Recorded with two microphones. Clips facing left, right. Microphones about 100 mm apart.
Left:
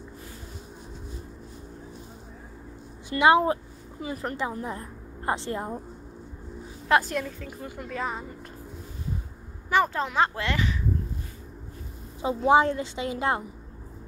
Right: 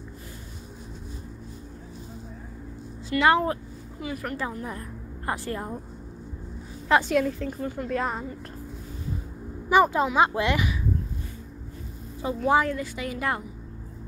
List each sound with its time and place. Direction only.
3.1 s speech: 20° left (ahead or behind)
4.0 s a woman's voice: 35° left (ahead or behind)
4.4 s a woman's voice: 20° left (ahead or behind)
6.9 s a woman's voice: centre (ahead or behind)
9.7 s speech: 15° right (ahead or behind)
12.2 s a woman's voice: 20° left (ahead or behind)